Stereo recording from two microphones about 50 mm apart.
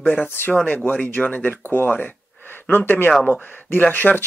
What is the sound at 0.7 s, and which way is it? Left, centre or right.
Speech, left.